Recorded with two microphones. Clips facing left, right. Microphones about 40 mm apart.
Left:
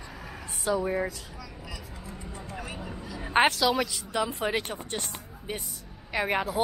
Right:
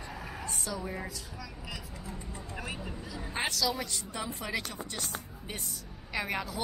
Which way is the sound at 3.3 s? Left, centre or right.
Left.